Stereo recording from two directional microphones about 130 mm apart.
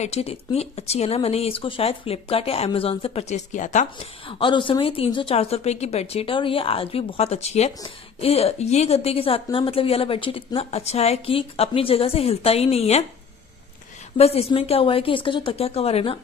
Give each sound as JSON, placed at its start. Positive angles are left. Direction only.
{"t": 0.0, "sound": "a woman's voice", "side_deg": 50}
{"t": 4.0, "sound": "a woman's voice", "side_deg": 40}
{"t": 14.1, "sound": "a woman's voice", "side_deg": 50}